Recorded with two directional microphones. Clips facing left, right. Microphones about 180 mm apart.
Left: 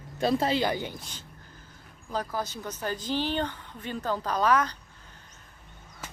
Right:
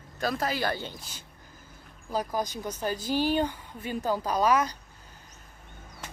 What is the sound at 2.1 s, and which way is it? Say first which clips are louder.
A woman's voice: right 2 dB; 15° right (ahead or behind).